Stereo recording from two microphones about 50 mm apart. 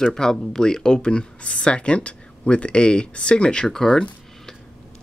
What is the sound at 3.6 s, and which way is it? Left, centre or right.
Speech, centre.